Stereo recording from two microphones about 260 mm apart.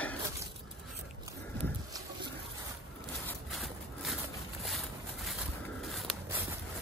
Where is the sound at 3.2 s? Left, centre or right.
Centre.